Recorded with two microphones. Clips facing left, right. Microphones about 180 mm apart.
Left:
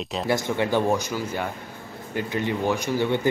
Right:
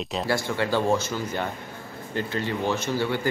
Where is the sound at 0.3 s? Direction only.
20° left (ahead or behind).